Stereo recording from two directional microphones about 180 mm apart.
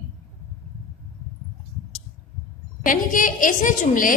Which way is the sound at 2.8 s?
50° left (ahead or behind).